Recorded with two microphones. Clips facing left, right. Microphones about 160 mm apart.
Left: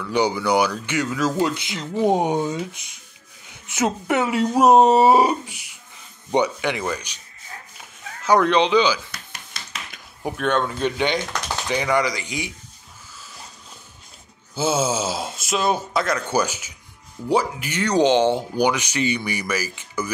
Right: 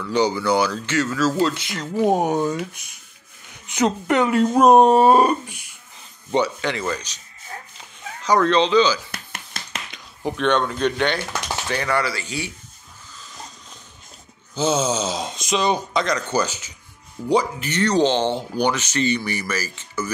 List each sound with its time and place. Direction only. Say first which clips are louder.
0.1 s speech: even; 10° left (ahead or behind)
3.7 s speech: right 2 dB; 10° left (ahead or behind)
8.2 s speech: even; 10° left (ahead or behind)
9.1 s dishes: right 3 dB; 55° right (ahead or behind)
9.8 s speech: right 2 dB; 10° left (ahead or behind)
14.5 s speech: right 1 dB; 5° left (ahead or behind)